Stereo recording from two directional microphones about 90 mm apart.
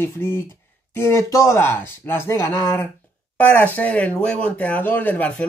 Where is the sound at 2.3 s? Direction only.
35° left (ahead or behind).